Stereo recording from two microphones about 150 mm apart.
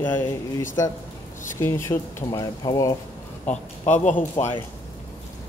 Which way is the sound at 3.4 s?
50° left (ahead or behind).